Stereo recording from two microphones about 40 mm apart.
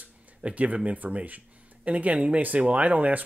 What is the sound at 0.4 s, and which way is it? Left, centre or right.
Speech, right.